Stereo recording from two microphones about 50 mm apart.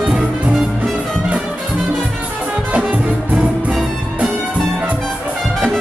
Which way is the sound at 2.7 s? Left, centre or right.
Right.